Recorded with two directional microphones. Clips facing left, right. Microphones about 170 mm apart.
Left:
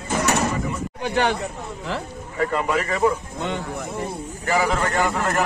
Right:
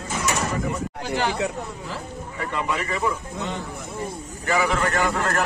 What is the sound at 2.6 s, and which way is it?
Speech, 45° left (ahead or behind).